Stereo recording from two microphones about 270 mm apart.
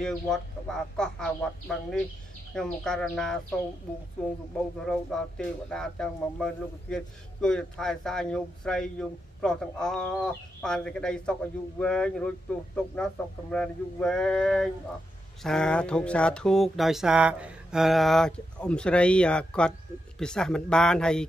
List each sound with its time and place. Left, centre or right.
0.0 s speech: centre
4.8 s speech: centre